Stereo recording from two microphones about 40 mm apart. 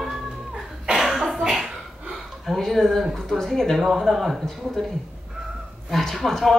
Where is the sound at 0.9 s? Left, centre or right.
Centre.